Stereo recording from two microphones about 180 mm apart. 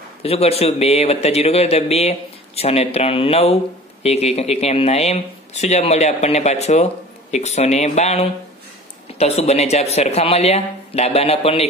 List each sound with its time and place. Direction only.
0.2 s speech: 35° left (ahead or behind)